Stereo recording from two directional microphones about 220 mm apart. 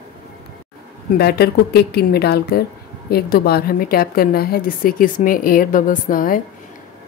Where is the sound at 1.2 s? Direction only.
45° left (ahead or behind).